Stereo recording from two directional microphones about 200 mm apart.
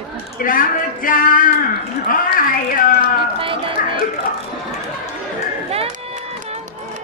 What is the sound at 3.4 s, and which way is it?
Music, 25° right (ahead or behind).